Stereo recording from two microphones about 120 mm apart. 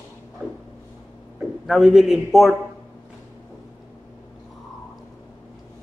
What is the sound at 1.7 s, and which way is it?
Speech, 5° right (ahead or behind).